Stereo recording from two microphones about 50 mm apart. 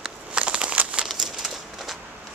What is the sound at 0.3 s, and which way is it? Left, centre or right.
Crumpling, centre.